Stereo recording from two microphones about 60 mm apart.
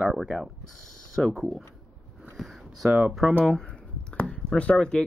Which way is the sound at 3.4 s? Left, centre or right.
Centre.